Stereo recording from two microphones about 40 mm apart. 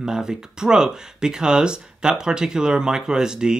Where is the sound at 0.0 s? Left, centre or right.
Centre.